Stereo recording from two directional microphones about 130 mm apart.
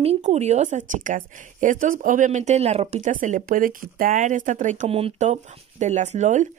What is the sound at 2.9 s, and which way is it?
Speech, 80° right.